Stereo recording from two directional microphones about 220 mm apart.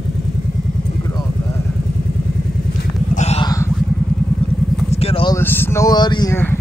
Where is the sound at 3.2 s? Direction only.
30° left (ahead or behind).